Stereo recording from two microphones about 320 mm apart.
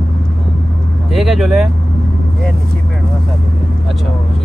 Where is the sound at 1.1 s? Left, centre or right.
Centre.